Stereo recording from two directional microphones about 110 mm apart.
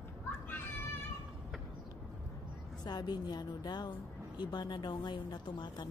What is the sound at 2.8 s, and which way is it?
A woman's voice, 40° left (ahead or behind).